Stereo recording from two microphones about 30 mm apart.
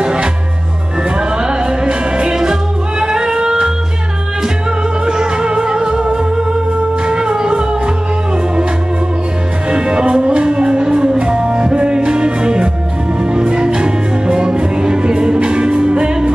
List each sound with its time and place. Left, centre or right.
0.0 s music: right
1.4 s music: right
5.0 s music: right
9.7 s music: right